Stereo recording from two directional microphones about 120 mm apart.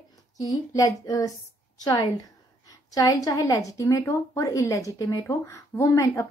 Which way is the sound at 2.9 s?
30° left (ahead or behind).